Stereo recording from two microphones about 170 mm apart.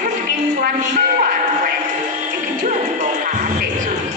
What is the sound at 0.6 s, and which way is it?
Music, 55° right (ahead or behind).